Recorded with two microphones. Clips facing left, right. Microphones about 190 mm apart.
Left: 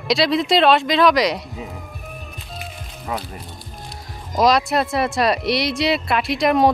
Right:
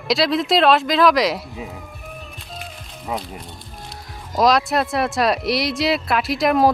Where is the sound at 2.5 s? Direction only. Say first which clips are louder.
Left 1 dB; centre (ahead or behind).